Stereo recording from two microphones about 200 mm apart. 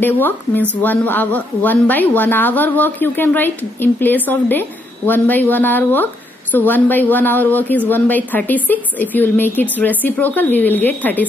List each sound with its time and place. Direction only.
0.0 s speech: 10° left (ahead or behind)